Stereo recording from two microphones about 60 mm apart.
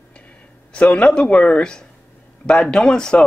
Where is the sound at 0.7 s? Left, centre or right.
Centre.